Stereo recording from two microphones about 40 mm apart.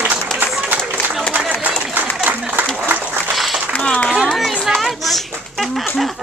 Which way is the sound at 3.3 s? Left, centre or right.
Centre.